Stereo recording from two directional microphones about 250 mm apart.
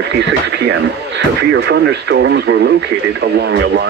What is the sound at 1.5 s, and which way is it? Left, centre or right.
Speech, right.